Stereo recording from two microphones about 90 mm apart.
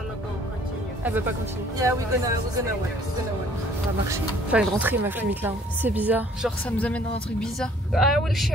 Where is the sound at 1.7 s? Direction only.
35° right (ahead or behind).